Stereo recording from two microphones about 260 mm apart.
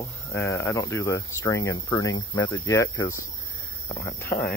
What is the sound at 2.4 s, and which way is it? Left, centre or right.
Speech, left.